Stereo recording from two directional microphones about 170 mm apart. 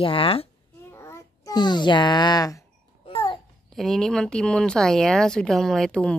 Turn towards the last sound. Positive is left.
turn(degrees=5)  # may be behind; listen again after turning